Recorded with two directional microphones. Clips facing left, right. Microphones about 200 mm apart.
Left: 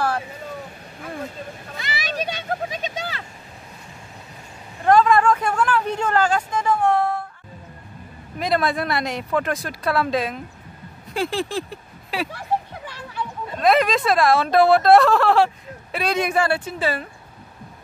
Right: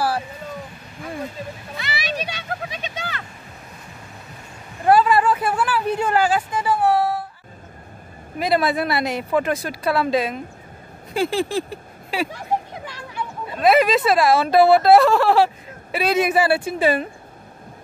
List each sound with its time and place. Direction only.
1.9 s a sound: 45° left (ahead or behind)
4.8 s vehicle: 5° right (ahead or behind)
8.4 s speech: 5° right (ahead or behind)